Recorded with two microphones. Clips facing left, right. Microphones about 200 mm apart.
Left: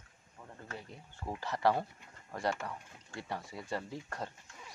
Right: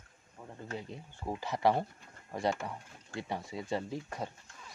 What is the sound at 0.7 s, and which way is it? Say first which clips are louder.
Speech: right 6 dB; 20° right (ahead or behind).